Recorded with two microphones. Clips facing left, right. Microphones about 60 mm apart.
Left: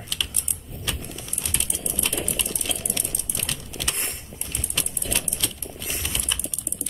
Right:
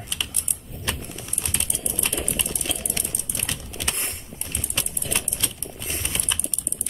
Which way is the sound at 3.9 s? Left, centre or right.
Centre.